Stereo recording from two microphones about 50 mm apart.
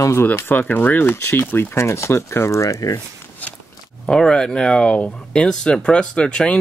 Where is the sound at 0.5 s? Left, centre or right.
Left.